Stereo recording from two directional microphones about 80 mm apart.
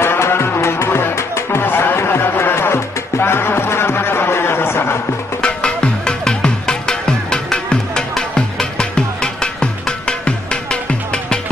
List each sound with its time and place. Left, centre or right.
0.0 s music: left
5.4 s music: centre